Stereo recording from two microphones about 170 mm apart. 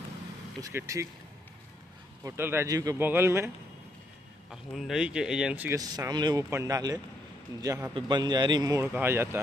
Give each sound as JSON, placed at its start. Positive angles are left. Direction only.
{"t": 0.6, "sound": "speech", "side_deg": -20}
{"t": 2.2, "sound": "a man's voice", "side_deg": -15}
{"t": 4.5, "sound": "speech", "side_deg": 0}
{"t": 5.8, "sound": "a man's voice", "side_deg": -20}
{"t": 8.8, "sound": "a man's voice", "side_deg": -10}